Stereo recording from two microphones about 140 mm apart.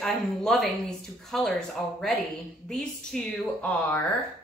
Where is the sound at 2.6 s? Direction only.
5° left (ahead or behind).